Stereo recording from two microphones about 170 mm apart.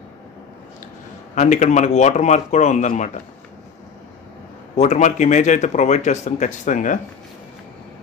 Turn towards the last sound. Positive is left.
turn(degrees=50)  # may be behind; listen again after turning